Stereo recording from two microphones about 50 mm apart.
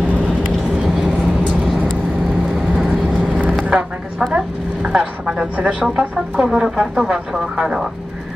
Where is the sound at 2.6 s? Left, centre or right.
Centre.